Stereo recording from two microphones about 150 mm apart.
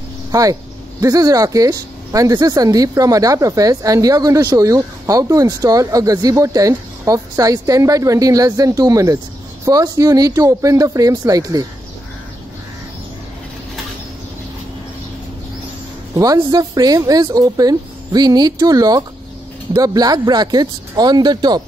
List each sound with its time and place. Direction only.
0.3 s speech: 25° right (ahead or behind)
16.2 s speech: 20° right (ahead or behind)